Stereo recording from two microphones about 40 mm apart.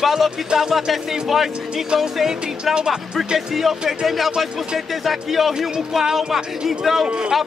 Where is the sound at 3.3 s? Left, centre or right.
Centre.